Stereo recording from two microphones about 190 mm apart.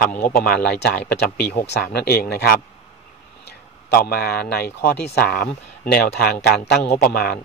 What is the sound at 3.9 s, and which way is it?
Speech, 50° left (ahead or behind).